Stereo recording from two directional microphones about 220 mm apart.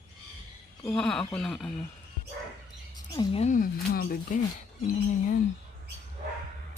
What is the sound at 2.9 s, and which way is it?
Speech, 20° left (ahead or behind).